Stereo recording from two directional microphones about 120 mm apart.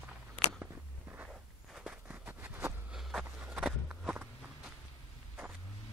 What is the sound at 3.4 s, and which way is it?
Walk, 10° right (ahead or behind).